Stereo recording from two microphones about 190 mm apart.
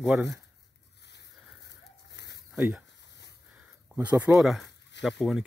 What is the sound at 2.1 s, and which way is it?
Bird, 65° left (ahead or behind).